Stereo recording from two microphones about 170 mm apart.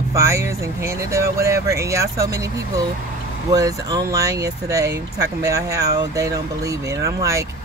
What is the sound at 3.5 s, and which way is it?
Speech, 20° right (ahead or behind).